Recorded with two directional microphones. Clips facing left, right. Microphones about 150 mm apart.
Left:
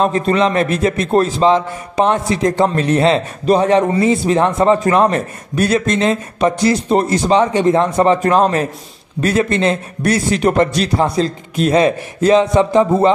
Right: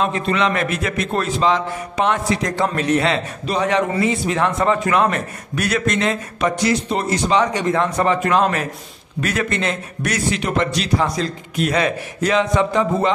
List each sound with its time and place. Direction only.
0.0 s a man's voice: 40° left (ahead or behind)
10.4 s a man's voice: 40° left (ahead or behind)
11.1 s a man's voice: 30° left (ahead or behind)